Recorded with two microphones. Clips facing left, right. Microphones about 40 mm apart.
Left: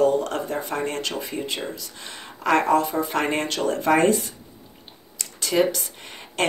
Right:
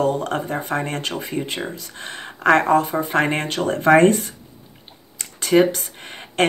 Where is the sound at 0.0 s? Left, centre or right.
Right.